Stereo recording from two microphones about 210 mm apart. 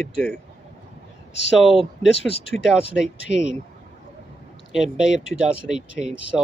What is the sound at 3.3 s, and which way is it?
Speech, 30° right (ahead or behind).